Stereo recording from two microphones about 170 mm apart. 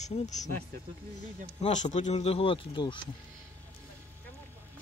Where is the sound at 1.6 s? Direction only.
45° left (ahead or behind).